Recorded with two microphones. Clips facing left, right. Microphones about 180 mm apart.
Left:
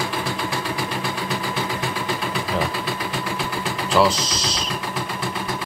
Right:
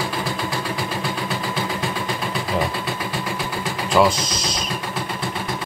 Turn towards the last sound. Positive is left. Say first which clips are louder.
# right 1 dB
turn(degrees=-10)  # may be behind; listen again after turning